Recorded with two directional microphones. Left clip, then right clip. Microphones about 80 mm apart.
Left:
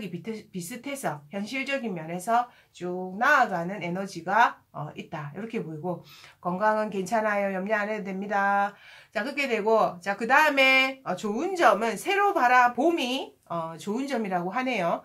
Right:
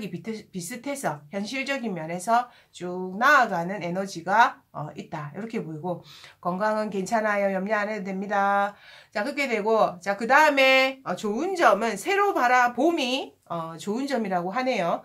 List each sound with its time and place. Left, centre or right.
0.2 s speech: right
2.8 s speech: right; by 15.0 s centre